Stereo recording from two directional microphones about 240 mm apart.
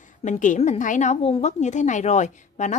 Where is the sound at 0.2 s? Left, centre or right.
Left.